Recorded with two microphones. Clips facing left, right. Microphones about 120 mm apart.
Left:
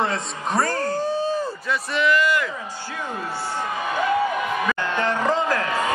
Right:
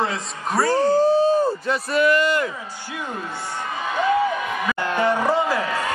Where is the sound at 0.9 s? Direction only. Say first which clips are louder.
Right 7 dB; 30° right (ahead or behind).